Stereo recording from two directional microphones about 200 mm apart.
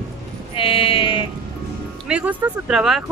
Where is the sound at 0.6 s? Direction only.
25° left (ahead or behind).